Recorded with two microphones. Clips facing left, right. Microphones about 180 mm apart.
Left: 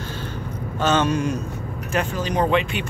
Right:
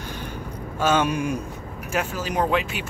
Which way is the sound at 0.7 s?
10° right (ahead or behind).